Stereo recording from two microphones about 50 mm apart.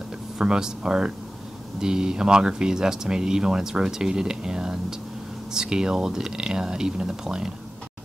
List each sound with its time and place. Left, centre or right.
0.4 s speech: centre